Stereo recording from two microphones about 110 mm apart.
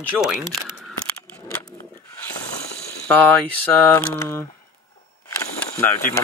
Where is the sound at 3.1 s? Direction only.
15° left (ahead or behind).